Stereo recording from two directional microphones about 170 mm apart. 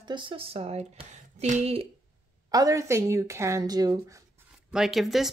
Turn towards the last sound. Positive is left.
turn(degrees=0)  # may be behind; listen again after turning